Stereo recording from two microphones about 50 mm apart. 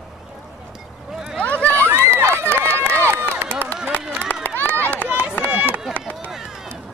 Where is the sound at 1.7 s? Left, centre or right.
Right.